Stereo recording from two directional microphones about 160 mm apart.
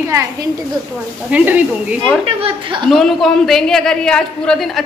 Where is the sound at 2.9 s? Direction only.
Centre (ahead or behind).